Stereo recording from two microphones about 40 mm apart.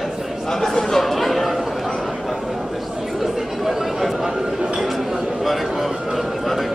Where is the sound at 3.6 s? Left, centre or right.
Centre.